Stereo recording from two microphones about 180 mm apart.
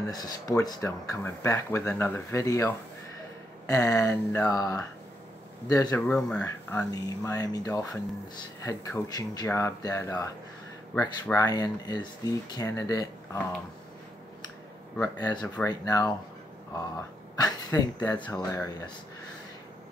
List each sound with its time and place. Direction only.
0.1 s speech: 20° left (ahead or behind)
11.3 s speech: 20° left (ahead or behind)
15.0 s speech: 20° left (ahead or behind)
17.7 s speech: 15° left (ahead or behind)